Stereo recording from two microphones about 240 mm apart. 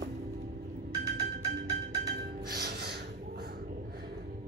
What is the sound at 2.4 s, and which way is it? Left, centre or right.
Gasp, right.